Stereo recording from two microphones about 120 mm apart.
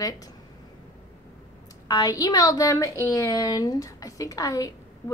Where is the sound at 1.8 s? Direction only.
30° left (ahead or behind).